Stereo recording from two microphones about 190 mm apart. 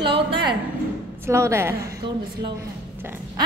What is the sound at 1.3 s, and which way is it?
Speech, 15° right (ahead or behind).